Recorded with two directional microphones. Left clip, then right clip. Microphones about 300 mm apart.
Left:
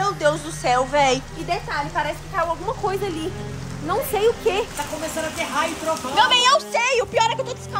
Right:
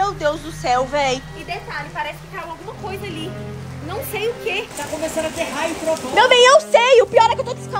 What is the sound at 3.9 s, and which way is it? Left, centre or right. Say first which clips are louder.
Speech: left 4 dB; centre.